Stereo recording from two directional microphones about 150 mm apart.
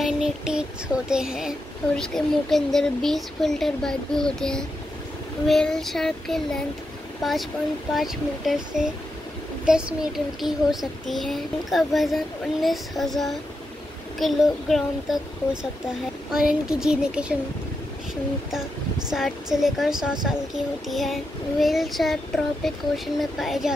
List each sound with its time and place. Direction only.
0.0 s child singing: 5° right (ahead or behind)
2.0 s speech: 5° left (ahead or behind)
16.3 s speech: 5° right (ahead or behind)
19.0 s speech: centre (ahead or behind)